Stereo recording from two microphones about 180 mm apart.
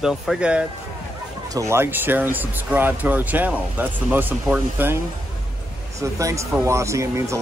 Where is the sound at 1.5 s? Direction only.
15° right (ahead or behind).